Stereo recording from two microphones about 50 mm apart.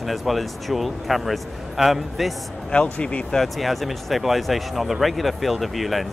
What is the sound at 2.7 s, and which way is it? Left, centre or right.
Speech, left.